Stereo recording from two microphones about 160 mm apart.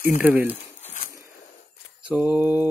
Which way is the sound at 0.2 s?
10° right (ahead or behind).